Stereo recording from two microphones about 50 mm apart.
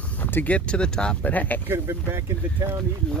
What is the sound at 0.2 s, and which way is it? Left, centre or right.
Speech, left.